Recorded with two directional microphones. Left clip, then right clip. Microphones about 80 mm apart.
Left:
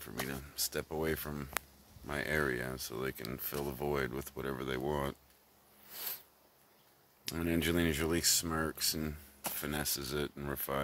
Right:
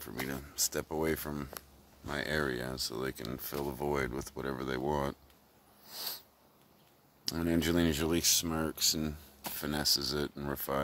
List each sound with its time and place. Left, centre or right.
0.1 s speech: right
2.0 s speech: centre
2.5 s speech: centre
3.3 s speech: centre
5.9 s a sound: right
7.2 s speech: right
10.5 s speech: centre